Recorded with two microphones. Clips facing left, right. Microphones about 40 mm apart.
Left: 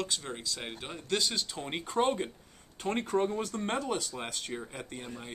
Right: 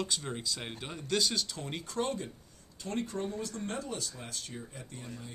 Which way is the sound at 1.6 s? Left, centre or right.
Left.